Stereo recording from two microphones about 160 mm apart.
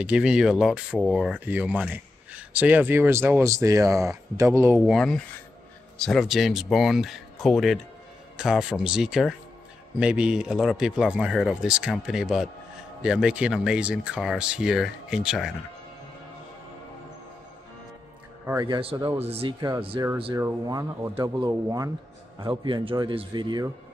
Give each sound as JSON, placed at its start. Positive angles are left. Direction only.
{"t": 0.0, "sound": "speech", "side_deg": -5}
{"t": 4.8, "sound": "a man's voice", "side_deg": 5}
{"t": 18.5, "sound": "speech", "side_deg": -20}
{"t": 18.8, "sound": "a man's voice", "side_deg": -35}
{"t": 19.9, "sound": "speech", "side_deg": -25}
{"t": 22.4, "sound": "a man's voice", "side_deg": -30}